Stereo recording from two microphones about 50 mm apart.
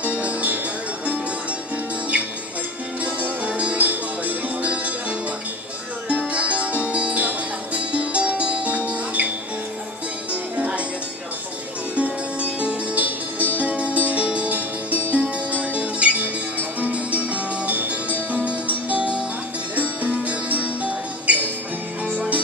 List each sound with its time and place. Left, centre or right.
0.0 s music: right
3.2 s music: right
6.0 s music: right
10.3 s music: right
11.9 s music: right